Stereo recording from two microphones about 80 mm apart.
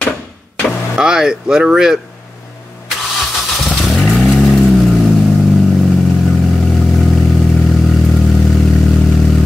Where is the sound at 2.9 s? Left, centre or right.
Centre.